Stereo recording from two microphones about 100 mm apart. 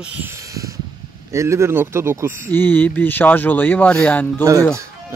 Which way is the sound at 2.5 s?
20° left (ahead or behind).